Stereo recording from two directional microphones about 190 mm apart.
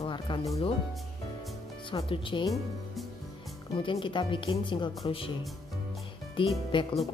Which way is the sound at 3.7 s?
25° left (ahead or behind).